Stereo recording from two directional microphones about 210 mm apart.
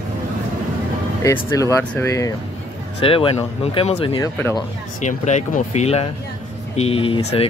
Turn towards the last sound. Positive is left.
turn(degrees=30)  # may be behind; listen again after turning